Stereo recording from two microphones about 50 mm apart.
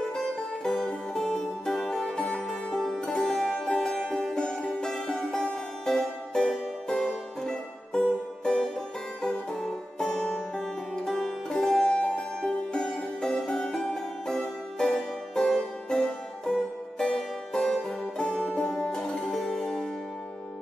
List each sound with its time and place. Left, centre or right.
0.1 s music: centre
2.0 s music: centre